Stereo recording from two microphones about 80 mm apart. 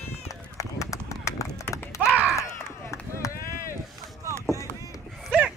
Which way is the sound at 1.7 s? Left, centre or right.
Left.